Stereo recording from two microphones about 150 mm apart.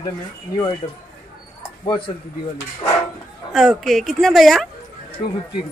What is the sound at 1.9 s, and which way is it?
Speech, 30° left (ahead or behind).